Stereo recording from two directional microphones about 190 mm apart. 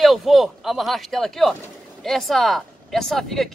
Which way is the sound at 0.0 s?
Centre (ahead or behind).